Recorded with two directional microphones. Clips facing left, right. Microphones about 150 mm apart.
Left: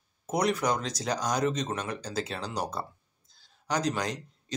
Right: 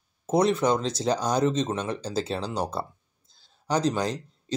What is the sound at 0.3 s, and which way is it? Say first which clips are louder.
Speech: right 5 dB; 25° right (ahead or behind).